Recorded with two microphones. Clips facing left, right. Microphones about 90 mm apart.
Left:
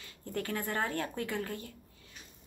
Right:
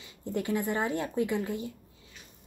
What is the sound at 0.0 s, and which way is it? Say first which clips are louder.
Speech: right 5 dB; 20° right (ahead or behind).